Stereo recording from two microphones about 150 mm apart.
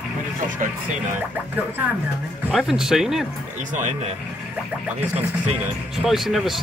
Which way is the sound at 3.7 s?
55° right (ahead or behind).